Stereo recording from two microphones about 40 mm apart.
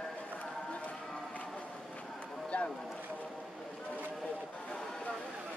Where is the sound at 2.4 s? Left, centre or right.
Left.